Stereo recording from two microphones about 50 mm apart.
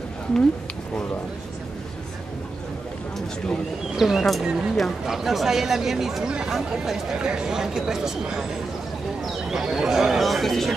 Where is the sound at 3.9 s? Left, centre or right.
Centre.